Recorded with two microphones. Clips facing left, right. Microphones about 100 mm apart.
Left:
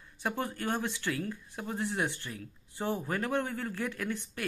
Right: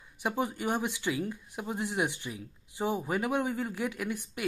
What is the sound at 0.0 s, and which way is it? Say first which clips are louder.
Speech: right 3 dB; 15° right (ahead or behind).